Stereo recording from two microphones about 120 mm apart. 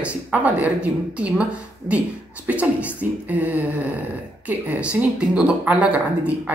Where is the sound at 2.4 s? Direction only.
10° right (ahead or behind).